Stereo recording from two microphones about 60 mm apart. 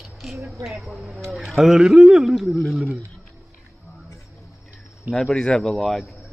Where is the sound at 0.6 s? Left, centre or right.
Centre.